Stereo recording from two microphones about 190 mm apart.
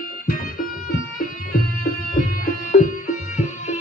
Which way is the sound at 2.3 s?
45° left (ahead or behind).